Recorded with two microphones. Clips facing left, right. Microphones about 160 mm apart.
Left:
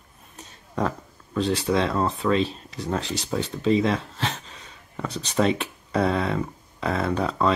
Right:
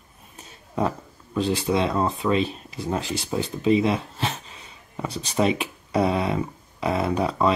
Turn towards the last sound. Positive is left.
turn(degrees=-10)  # may be behind; listen again after turning